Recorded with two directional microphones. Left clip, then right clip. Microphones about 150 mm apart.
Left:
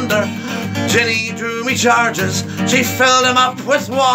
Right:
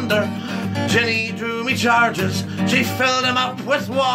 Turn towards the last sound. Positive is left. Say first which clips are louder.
# left 5 dB
turn(degrees=-5)  # may be behind; listen again after turning